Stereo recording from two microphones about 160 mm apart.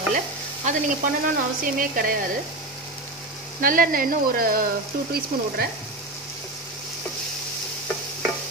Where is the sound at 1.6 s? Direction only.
60° right (ahead or behind).